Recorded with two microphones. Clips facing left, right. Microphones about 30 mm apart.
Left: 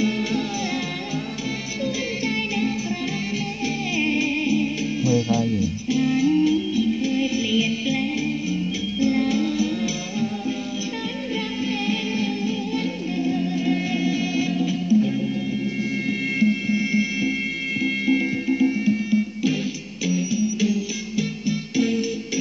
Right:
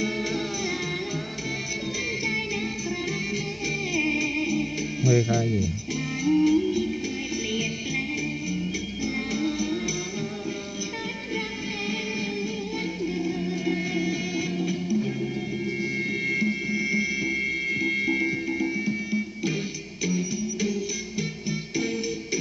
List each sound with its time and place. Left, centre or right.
2.2 s music: left
3.9 s music: left
9.0 s music: left
13.2 s music: left
18.9 s music: left